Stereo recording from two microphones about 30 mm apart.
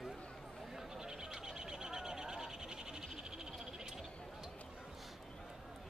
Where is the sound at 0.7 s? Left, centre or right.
Right.